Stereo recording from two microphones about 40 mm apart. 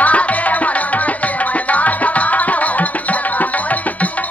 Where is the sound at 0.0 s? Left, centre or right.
Left.